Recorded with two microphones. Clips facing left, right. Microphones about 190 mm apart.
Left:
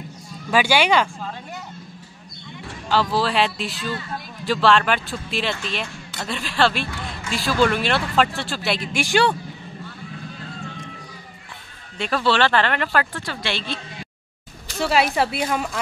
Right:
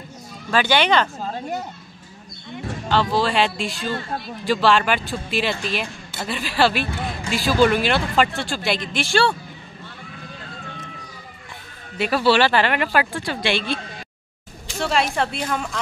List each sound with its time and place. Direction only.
0.5 s speech: 10° left (ahead or behind)
1.2 s a sound: 40° right (ahead or behind)
2.9 s speech: 5° left (ahead or behind)
12.0 s speech: 10° right (ahead or behind)
14.8 s speech: 5° left (ahead or behind)